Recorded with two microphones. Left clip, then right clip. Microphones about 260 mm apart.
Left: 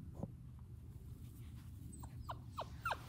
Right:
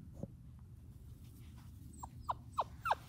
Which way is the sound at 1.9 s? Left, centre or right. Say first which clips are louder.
Right 9 dB; right.